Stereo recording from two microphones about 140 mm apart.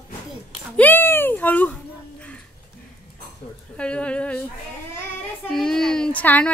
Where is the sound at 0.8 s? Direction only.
15° left (ahead or behind).